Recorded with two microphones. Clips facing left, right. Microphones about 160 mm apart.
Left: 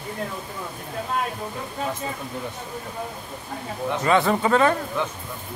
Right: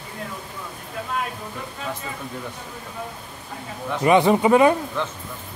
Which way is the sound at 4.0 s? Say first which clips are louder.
Right 4 dB; 15° right (ahead or behind).